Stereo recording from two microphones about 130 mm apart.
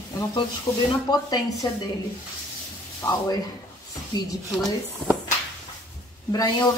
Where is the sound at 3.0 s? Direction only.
30° left (ahead or behind).